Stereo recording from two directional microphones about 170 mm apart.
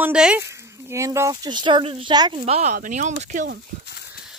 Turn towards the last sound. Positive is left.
turn(degrees=-45)  # may be behind; listen again after turning